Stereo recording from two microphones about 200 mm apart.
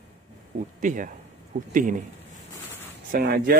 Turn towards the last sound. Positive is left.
turn(degrees=-50)  # may be behind; listen again after turning